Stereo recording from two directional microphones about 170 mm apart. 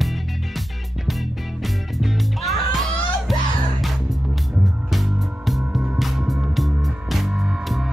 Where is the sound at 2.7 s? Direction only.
Centre (ahead or behind).